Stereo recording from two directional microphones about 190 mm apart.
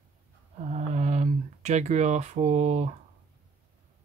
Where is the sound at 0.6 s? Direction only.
35° right (ahead or behind).